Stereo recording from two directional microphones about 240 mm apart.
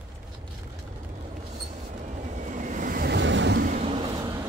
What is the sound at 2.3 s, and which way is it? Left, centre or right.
Waves, right.